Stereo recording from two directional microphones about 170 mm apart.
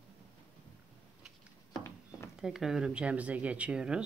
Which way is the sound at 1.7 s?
15° left (ahead or behind).